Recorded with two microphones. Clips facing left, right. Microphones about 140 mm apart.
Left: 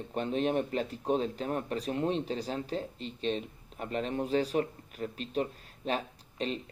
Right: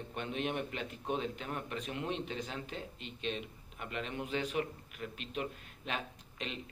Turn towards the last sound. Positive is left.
turn(degrees=35)  # may be behind; listen again after turning